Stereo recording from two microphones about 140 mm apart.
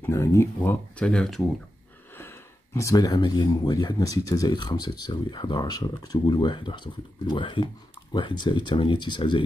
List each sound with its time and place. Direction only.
0.0 s speech: 20° left (ahead or behind); by 1.4 s 5° left (ahead or behind)
2.1 s speech: 20° left (ahead or behind); by 9.4 s 35° left (ahead or behind)